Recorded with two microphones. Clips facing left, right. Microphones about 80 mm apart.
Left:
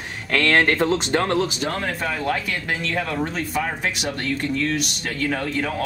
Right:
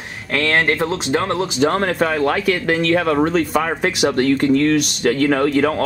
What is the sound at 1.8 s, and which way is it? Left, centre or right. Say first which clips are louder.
Speech: right 8 dB; right.